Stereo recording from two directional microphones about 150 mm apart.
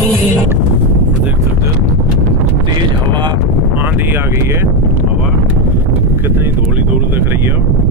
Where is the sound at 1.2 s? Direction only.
20° right (ahead or behind).